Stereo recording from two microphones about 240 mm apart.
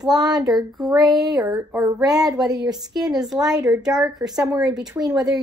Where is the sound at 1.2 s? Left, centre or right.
Centre.